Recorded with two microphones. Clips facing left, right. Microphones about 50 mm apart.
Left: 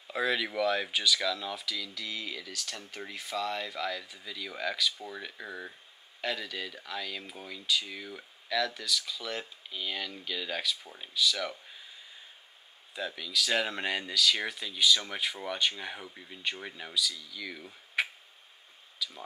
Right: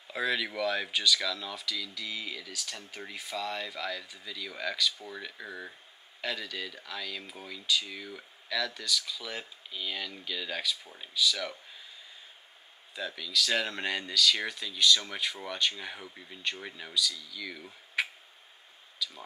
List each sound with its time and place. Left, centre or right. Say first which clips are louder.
0.1 s speech: left 1 dB; centre
12.9 s speech: right 1 dB; centre